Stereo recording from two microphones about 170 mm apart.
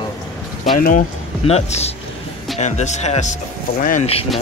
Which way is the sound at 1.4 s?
40° left (ahead or behind).